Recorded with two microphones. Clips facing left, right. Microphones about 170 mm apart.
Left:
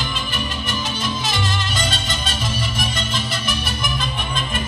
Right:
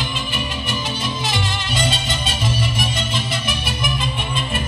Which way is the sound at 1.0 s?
25° right (ahead or behind).